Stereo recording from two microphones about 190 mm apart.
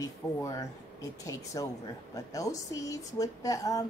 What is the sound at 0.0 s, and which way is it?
A woman's voice, 15° left (ahead or behind).